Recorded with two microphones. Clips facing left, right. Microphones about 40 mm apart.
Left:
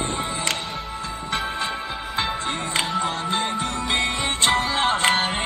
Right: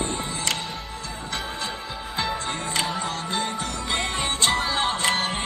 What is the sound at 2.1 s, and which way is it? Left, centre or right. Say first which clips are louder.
Music: left 2 dB; left.